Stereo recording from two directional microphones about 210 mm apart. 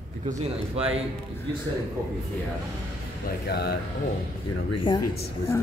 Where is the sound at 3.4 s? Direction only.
50° left (ahead or behind).